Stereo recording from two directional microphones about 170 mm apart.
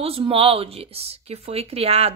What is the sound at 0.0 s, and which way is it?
Speech, 35° right (ahead or behind).